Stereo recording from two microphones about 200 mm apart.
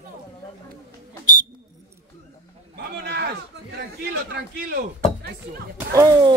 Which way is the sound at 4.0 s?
55° right (ahead or behind).